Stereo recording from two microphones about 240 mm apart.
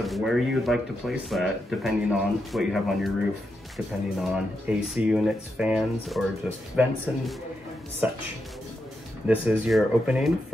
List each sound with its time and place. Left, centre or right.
0.0 s speech: centre
9.3 s speech: centre